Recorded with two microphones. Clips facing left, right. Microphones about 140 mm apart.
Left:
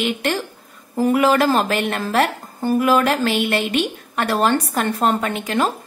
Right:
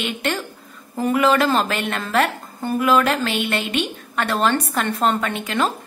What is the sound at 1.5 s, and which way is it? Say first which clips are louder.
A woman's voice: left 2 dB; 45° left (ahead or behind).